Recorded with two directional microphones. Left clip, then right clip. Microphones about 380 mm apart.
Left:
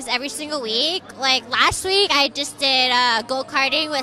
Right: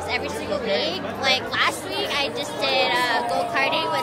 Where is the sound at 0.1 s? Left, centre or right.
Left.